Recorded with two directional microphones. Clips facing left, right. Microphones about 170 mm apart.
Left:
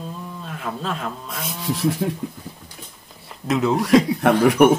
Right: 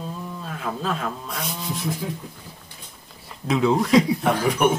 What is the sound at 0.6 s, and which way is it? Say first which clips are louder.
Speech: right 1 dB; centre (ahead or behind).